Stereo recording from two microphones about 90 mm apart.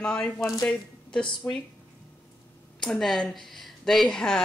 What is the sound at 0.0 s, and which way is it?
Speech, 10° left (ahead or behind).